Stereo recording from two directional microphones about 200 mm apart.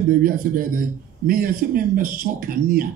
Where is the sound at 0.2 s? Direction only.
45° right (ahead or behind).